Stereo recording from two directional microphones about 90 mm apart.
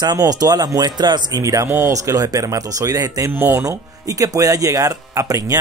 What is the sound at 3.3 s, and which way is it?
Speech, 25° right (ahead or behind).